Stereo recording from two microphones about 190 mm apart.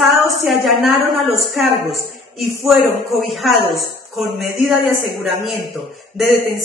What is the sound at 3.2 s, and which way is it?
A woman's voice, centre (ahead or behind).